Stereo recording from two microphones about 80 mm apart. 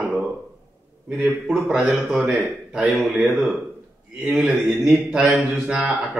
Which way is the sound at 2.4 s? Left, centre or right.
Centre.